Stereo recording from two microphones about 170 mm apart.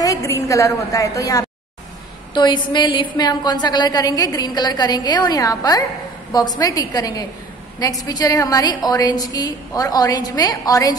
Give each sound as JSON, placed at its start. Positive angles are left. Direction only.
{"t": 0.0, "sound": "a woman's voice", "side_deg": 20}